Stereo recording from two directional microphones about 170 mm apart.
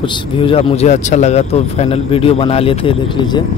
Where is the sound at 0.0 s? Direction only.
30° left (ahead or behind).